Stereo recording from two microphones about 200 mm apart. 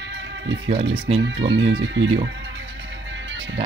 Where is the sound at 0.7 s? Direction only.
30° right (ahead or behind).